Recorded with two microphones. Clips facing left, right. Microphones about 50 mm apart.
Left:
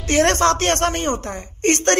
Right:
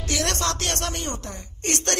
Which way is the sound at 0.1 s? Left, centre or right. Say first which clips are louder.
Left 10 dB; left.